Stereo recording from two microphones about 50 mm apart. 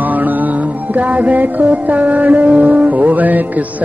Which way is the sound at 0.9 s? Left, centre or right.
Right.